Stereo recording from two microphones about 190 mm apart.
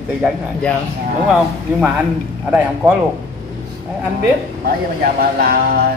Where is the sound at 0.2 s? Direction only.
5° left (ahead or behind).